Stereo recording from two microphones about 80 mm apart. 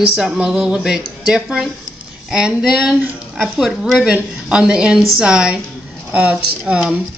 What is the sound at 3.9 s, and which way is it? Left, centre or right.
Speech, centre.